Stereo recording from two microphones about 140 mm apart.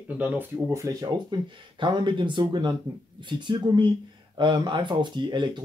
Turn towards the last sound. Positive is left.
turn(degrees=-35)  # may be behind; listen again after turning